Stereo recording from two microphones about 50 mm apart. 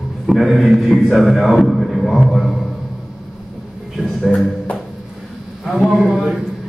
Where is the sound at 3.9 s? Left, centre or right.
Centre.